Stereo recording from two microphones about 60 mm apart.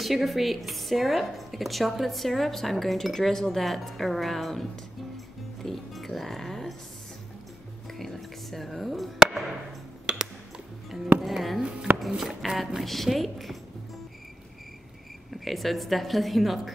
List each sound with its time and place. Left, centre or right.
0.0 s speech: centre
5.1 s music: centre
8.0 s chop: centre
10.1 s a sound: centre
11.1 s music: centre
12.0 s speech: centre
15.3 s speech: centre